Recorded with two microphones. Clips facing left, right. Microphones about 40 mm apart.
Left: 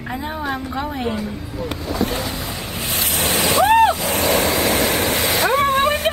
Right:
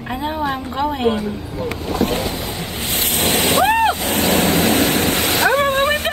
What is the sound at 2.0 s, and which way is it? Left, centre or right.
Boat, right.